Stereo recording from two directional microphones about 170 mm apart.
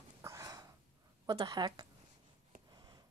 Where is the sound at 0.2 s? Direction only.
20° right (ahead or behind).